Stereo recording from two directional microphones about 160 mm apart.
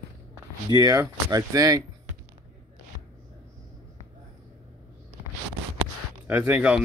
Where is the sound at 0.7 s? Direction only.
25° right (ahead or behind).